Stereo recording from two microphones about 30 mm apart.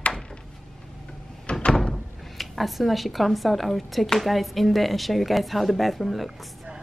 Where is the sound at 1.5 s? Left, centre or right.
Left.